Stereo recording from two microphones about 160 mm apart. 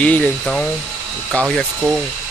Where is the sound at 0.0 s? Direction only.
10° left (ahead or behind).